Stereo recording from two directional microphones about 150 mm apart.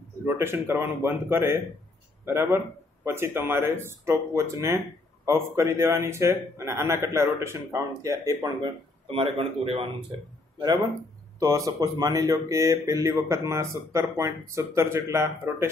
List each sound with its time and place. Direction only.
0.2 s speech: 15° right (ahead or behind)
9.0 s speech: 35° right (ahead or behind)
11.3 s a man's voice: 25° right (ahead or behind)